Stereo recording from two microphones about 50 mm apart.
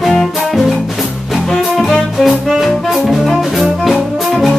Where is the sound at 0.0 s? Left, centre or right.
Centre.